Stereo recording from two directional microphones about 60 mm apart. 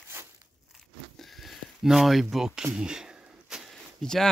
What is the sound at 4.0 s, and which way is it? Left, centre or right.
Speech, centre.